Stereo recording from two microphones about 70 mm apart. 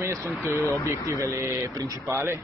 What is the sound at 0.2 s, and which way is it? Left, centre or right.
Speech, left.